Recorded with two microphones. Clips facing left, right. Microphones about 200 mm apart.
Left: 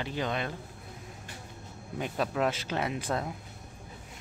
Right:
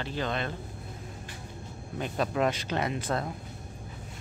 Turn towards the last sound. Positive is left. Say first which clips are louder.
# right 1 dB
turn(degrees=10)  # may be behind; listen again after turning